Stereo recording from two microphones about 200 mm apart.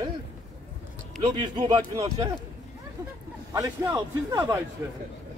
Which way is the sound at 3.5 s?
15° right (ahead or behind).